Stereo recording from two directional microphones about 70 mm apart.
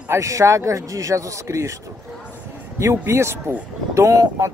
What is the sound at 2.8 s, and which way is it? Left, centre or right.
A man's voice, right.